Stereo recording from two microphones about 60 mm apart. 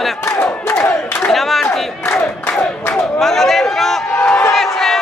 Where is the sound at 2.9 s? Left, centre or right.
Centre.